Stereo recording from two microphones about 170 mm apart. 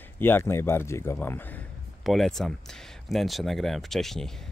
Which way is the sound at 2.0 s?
Centre (ahead or behind).